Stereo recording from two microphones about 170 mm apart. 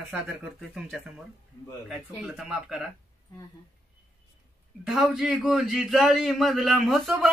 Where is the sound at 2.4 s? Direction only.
5° right (ahead or behind).